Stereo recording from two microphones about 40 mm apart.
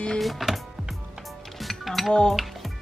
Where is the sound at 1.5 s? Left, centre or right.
Centre.